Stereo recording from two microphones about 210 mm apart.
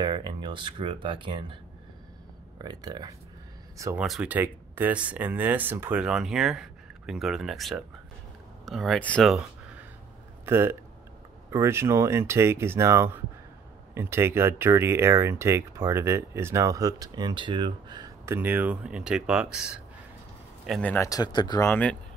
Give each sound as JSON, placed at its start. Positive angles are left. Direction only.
{"t": 0.0, "sound": "speech", "side_deg": -20}
{"t": 2.6, "sound": "speech", "side_deg": -20}
{"t": 4.0, "sound": "speech", "side_deg": -5}
{"t": 10.4, "sound": "speech", "side_deg": -10}